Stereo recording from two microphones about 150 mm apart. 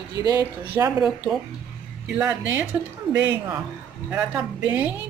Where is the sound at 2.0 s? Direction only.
5° right (ahead or behind).